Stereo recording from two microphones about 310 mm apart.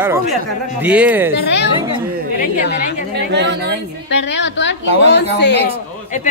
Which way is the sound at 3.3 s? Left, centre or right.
Right.